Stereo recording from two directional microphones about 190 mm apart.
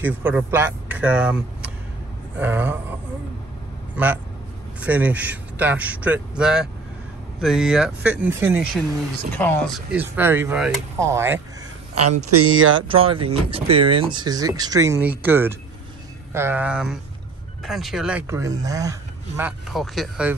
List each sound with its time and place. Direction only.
0.0 s a man's voice: 10° right (ahead or behind)
9.3 s speech: 10° left (ahead or behind)
9.9 s a man's voice: 10° right (ahead or behind)
12.4 s speech: 90° right
12.8 s a man's voice: 30° right (ahead or behind)
19.7 s speech: centre (ahead or behind)